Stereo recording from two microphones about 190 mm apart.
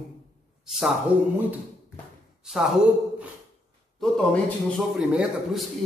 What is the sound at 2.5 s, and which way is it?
Speech, centre (ahead or behind).